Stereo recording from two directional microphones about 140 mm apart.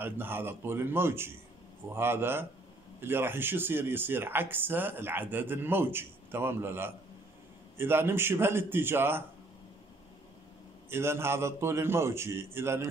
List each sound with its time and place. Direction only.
0.0 s speech: 15° right (ahead or behind)
10.9 s a man's voice: 20° right (ahead or behind)